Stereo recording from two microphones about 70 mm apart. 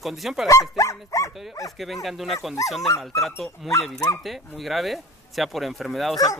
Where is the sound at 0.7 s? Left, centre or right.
Left.